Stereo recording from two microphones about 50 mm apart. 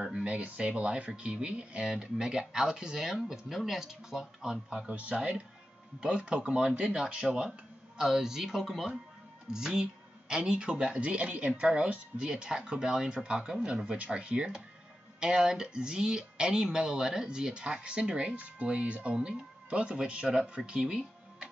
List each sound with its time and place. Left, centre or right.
0.2 s speech: right
4.8 s speech: right